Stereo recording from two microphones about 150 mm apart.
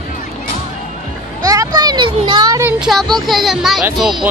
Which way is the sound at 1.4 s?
25° right (ahead or behind).